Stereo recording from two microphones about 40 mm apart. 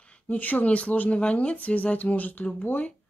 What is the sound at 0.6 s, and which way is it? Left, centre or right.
Speech, left.